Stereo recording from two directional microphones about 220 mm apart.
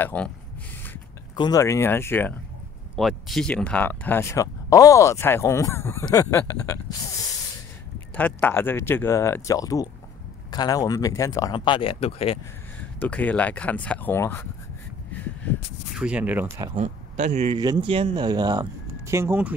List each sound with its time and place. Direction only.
0.0 s speech: 5° left (ahead or behind)
1.3 s speech: 20° left (ahead or behind)
8.1 s speech: 5° left (ahead or behind); by 12.4 s 25° left (ahead or behind)
13.0 s speech: 5° left (ahead or behind)
16.0 s speech: 5° right (ahead or behind)
16.7 s speech: 35° right (ahead or behind)
17.6 s speech: 20° right (ahead or behind)